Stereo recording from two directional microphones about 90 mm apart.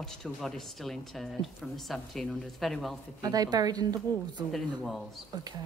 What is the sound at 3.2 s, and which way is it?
A woman's voice, 45° right (ahead or behind).